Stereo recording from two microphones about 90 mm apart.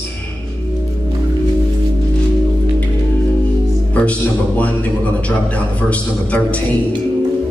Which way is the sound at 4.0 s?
15° left (ahead or behind).